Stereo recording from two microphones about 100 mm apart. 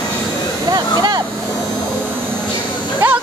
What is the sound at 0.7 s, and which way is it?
Vehicle, 45° right (ahead or behind).